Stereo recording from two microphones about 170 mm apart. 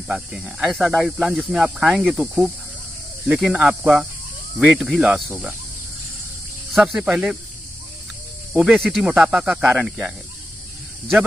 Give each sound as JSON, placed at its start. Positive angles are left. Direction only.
{"t": 0.1, "sound": "speech", "side_deg": 0}
{"t": 6.7, "sound": "speech", "side_deg": -5}
{"t": 8.5, "sound": "speech", "side_deg": 0}